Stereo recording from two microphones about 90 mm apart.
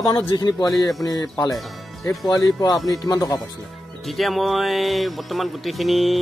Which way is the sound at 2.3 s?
45° left (ahead or behind).